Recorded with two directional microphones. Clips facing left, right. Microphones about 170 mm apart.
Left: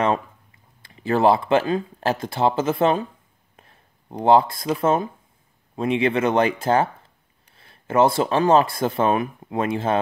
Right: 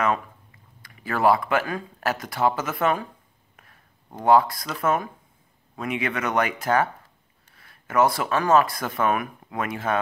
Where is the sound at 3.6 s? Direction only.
30° left (ahead or behind).